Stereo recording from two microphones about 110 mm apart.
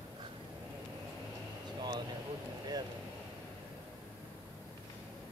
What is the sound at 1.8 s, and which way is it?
Vehicle, 40° right (ahead or behind).